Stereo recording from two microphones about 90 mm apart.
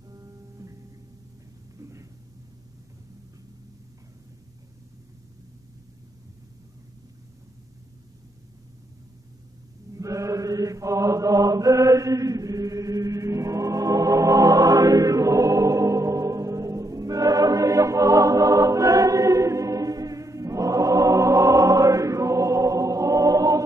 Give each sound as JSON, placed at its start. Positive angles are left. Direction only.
{"t": 0.1, "sound": "music", "side_deg": -40}
{"t": 1.8, "sound": "a sound", "side_deg": -35}
{"t": 9.9, "sound": "chant", "side_deg": -35}